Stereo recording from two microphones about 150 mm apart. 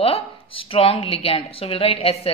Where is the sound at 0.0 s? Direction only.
40° left (ahead or behind).